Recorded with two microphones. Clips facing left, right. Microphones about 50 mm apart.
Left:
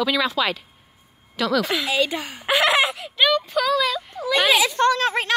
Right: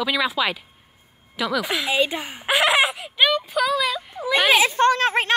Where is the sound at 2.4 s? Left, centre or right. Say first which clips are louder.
Even; centre.